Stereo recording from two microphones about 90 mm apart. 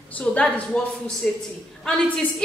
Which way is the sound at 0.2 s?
15° left (ahead or behind).